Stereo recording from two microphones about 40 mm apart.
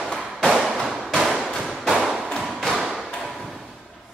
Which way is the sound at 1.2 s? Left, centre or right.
Centre.